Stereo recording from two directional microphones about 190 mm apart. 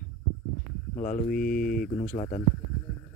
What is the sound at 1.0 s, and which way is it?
Speech, 40° left (ahead or behind).